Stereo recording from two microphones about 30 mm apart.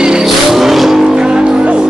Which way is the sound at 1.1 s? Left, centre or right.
Right.